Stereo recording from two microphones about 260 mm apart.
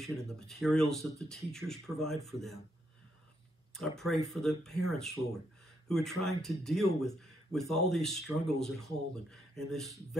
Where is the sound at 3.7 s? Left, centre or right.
Centre.